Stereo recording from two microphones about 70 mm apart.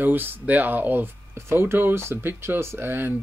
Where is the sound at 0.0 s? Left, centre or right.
Right.